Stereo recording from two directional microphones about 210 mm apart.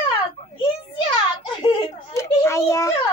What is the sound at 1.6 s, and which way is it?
A child's voice, 15° left (ahead or behind).